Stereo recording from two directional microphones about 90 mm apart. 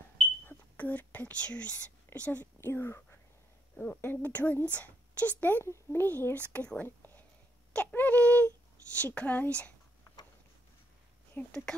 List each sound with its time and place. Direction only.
0.5 s speech: 20° left (ahead or behind)
3.7 s a woman's voice: 15° left (ahead or behind)
11.4 s a woman's voice: 20° left (ahead or behind)